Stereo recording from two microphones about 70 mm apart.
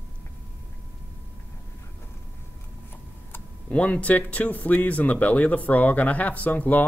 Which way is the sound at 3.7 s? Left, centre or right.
Centre.